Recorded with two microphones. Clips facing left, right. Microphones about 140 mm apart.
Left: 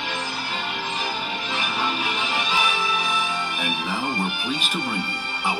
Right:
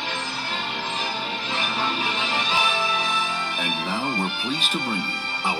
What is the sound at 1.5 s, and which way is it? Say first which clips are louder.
Music: even; 30° right (ahead or behind).